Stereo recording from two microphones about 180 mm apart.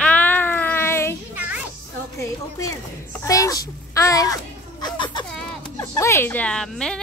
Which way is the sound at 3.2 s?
20° left (ahead or behind).